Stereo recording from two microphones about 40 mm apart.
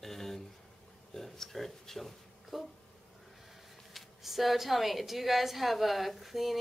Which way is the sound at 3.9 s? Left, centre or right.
Centre.